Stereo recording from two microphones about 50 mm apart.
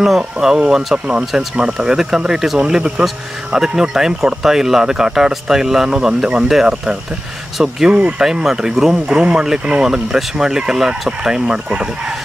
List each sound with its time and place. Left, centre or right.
0.0 s speech: centre